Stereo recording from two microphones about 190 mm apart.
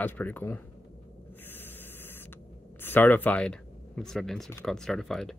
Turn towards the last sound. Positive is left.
turn(degrees=0)  # may be behind; listen again after turning